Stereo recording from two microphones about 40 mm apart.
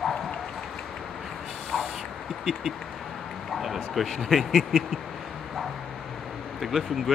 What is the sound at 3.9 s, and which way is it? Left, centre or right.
Speech, centre.